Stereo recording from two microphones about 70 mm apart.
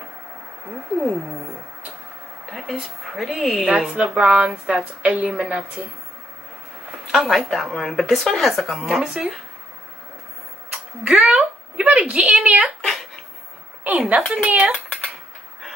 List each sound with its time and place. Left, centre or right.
2.5 s speech: centre
7.1 s speech: centre
9.0 s speech: centre
11.1 s a sound: centre
12.4 s speech: centre
13.8 s speech: centre